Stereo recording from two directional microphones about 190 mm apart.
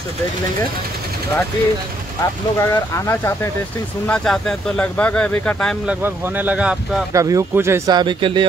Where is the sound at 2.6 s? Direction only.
15° left (ahead or behind).